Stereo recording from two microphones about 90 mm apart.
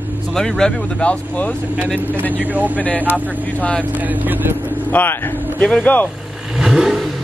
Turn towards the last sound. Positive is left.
turn(degrees=-5)  # may be behind; listen again after turning